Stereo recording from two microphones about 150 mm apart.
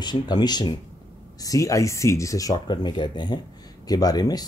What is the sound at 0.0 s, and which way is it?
Speech, 30° left (ahead or behind).